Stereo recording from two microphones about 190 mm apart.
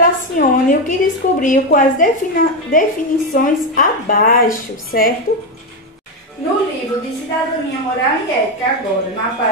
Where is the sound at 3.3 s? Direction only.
45° left (ahead or behind).